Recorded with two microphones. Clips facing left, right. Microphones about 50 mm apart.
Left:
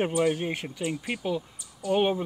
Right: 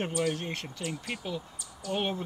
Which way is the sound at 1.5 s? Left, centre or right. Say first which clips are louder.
Left 5 dB; right.